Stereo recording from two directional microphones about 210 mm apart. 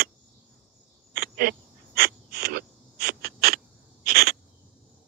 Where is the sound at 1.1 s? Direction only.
45° right (ahead or behind).